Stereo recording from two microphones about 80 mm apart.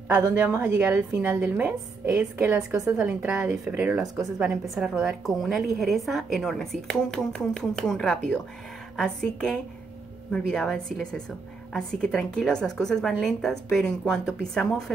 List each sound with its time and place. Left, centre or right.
0.3 s a woman's voice: centre
0.9 s a woman's voice: right
1.6 s a woman's voice: centre